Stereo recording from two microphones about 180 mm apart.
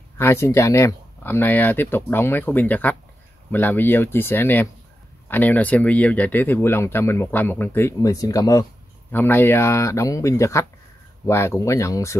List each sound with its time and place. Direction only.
0.2 s speech: 15° left (ahead or behind)